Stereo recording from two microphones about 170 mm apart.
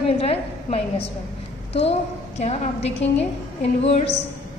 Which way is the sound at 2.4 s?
40° left (ahead or behind).